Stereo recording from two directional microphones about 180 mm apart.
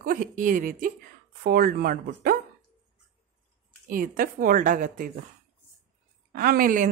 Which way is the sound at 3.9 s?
50° right (ahead or behind).